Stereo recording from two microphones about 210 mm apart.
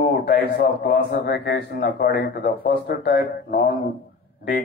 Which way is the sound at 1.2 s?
55° left (ahead or behind).